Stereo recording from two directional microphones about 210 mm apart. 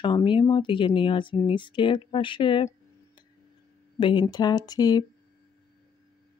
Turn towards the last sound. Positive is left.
turn(degrees=20)  # may be behind; listen again after turning